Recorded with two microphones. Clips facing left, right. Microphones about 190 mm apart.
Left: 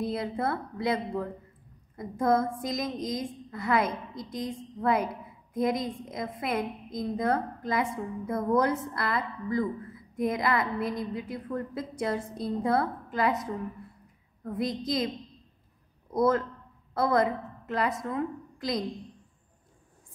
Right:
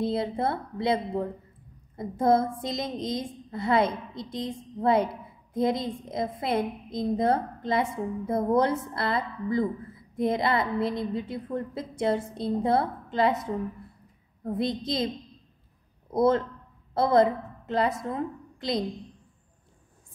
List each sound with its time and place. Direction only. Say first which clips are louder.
0.0 s a woman's voice: right 3 dB; 30° right (ahead or behind)
16.1 s a woman's voice: right 2 dB; 25° right (ahead or behind)